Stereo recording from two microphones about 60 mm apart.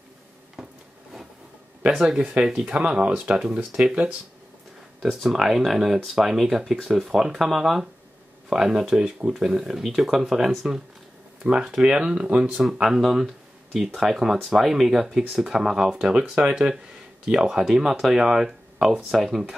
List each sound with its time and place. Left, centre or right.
0.6 s a sound: centre
2.0 s speech: centre
5.2 s speech: centre